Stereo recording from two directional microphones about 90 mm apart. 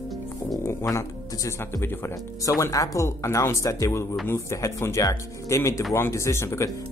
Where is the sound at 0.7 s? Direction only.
35° left (ahead or behind).